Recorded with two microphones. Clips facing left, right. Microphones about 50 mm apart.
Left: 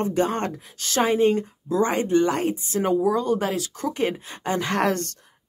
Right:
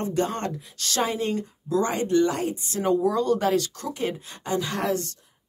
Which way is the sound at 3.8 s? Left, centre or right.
Left.